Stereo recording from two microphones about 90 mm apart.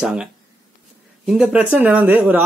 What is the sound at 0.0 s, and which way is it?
Speech, 10° right (ahead or behind).